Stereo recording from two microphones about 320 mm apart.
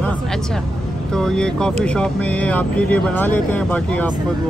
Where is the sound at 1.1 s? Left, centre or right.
Centre.